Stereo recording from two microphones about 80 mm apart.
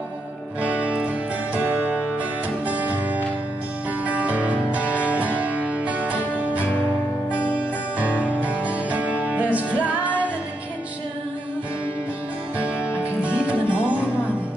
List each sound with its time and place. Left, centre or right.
0.6 s music: centre
8.0 s music: centre
12.5 s music: centre